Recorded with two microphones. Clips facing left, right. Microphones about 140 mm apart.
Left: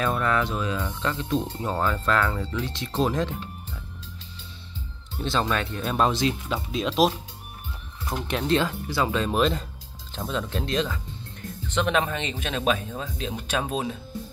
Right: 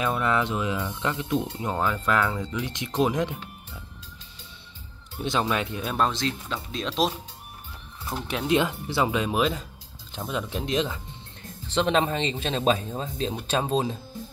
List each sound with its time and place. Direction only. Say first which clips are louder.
0.0 s speech: even; 15° right (ahead or behind)
5.2 s speech: even; 15° right (ahead or behind)
6.0 s speech: left 4 dB; 10° left (ahead or behind)
8.1 s speech: left 1 dB; 5° right (ahead or behind)
8.5 s speech: right 4 dB; 20° right (ahead or behind)
11.6 s speech: right 1 dB; 30° right (ahead or behind)